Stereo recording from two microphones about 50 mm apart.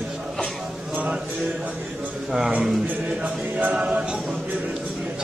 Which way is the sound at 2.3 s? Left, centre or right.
Centre.